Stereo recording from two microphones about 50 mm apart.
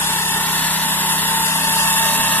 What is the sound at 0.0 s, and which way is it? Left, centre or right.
Engine, left.